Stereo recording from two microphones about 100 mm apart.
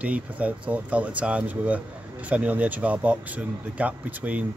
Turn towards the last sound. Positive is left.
turn(degrees=-15)  # may be behind; listen again after turning